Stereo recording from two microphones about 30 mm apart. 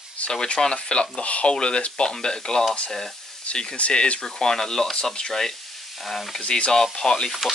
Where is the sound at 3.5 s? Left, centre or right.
Left.